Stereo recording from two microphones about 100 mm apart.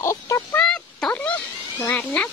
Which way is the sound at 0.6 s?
10° left (ahead or behind).